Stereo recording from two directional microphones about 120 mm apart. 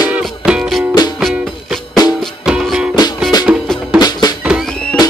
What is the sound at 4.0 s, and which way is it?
Music, 35° left (ahead or behind).